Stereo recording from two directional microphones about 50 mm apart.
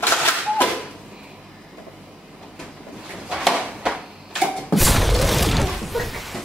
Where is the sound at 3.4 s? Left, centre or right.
Centre.